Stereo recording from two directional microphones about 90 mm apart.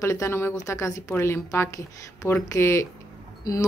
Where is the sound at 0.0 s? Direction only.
30° left (ahead or behind).